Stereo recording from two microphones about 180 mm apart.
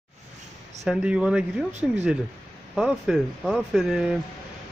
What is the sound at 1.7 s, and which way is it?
Speech, 40° right (ahead or behind).